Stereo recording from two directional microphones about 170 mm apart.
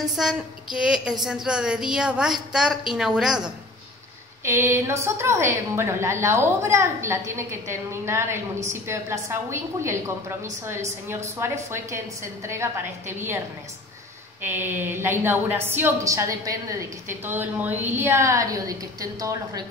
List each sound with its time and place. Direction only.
0.1 s a woman's voice: 5° right (ahead or behind)
4.5 s a woman's voice: 15° right (ahead or behind)
14.4 s a woman's voice: 10° right (ahead or behind)